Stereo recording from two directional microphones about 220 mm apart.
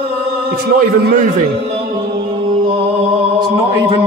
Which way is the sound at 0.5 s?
45° right (ahead or behind).